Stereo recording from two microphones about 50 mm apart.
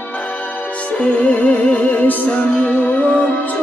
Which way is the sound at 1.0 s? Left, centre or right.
Left.